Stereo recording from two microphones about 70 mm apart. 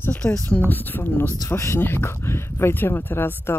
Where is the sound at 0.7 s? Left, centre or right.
Left.